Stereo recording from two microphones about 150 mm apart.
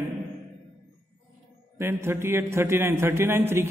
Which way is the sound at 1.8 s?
15° right (ahead or behind).